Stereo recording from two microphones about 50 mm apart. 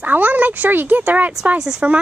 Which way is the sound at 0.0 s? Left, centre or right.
Right.